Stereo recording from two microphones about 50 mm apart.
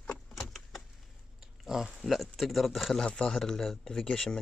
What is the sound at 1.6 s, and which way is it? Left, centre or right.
Speech, centre.